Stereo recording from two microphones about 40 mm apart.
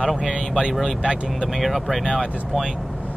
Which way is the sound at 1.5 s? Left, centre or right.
Centre.